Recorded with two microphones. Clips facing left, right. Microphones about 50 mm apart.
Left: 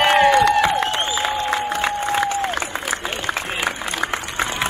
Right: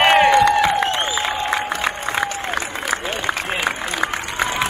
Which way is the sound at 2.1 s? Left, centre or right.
Centre.